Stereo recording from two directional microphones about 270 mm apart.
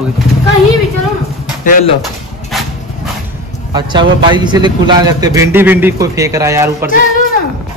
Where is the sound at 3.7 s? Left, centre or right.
Centre.